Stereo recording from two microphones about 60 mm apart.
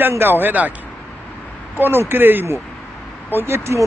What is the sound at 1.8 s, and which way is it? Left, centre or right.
Speech, right.